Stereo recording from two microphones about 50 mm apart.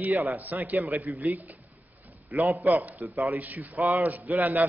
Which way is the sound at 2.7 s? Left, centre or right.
Right.